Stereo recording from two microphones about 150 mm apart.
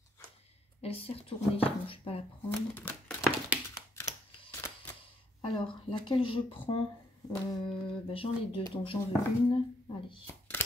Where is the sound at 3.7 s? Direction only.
20° left (ahead or behind).